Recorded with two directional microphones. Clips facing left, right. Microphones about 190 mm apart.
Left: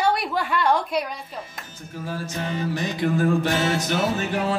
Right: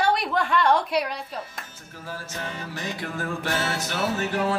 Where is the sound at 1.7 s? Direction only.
15° left (ahead or behind).